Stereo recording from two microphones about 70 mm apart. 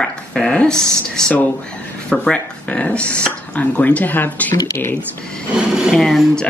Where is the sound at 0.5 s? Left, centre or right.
Centre.